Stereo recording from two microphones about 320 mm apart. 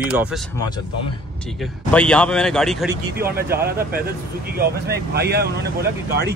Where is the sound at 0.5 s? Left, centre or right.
Centre.